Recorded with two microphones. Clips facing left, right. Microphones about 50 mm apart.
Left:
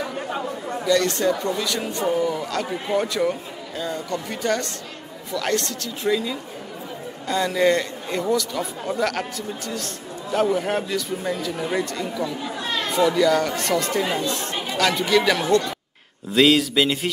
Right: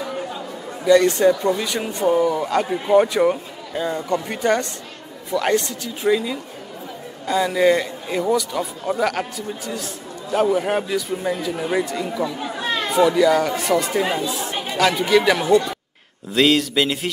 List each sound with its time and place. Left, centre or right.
0.8 s a man's voice: centre
12.5 s chatter: right
12.9 s a man's voice: centre
16.3 s speech: centre